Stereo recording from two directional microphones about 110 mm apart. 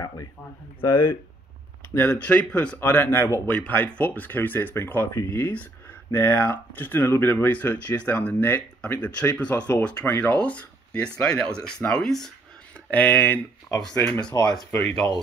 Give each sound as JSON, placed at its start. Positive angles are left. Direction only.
{"t": 2.0, "sound": "speech", "side_deg": 10}
{"t": 12.9, "sound": "speech", "side_deg": 15}